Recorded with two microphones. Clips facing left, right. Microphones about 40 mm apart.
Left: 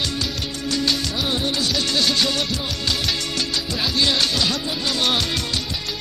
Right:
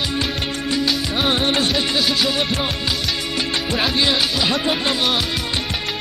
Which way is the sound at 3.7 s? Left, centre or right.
Right.